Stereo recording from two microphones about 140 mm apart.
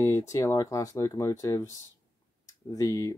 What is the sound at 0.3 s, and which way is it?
Speech, 25° left (ahead or behind).